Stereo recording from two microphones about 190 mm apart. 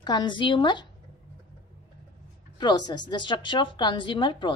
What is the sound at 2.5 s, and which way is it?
A woman's voice, 20° left (ahead or behind).